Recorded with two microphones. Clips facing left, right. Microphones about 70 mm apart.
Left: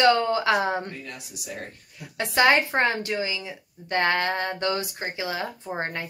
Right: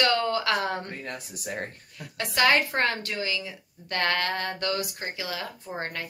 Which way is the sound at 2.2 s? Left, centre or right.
Left.